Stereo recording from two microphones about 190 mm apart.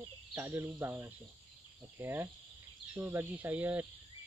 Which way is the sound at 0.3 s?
10° right (ahead or behind).